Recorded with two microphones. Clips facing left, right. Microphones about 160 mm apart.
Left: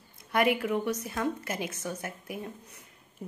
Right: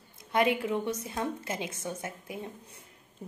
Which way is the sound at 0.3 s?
25° right (ahead or behind).